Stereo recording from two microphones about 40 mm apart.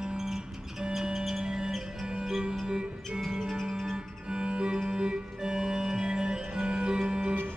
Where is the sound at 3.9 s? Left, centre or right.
Centre.